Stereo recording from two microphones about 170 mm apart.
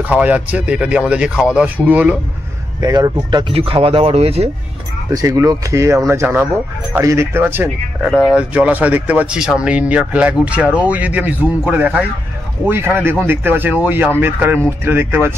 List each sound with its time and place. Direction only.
0.0 s speech: 10° right (ahead or behind)
2.8 s speech: 25° right (ahead or behind)
5.1 s speech: 20° right (ahead or behind)
8.0 s speech: 5° left (ahead or behind)
8.4 s speech: 10° right (ahead or behind)